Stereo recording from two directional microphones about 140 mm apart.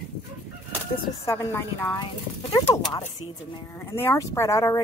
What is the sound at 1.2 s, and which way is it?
Speech, 20° left (ahead or behind).